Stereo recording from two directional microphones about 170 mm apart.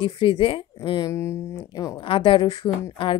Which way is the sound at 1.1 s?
15° left (ahead or behind).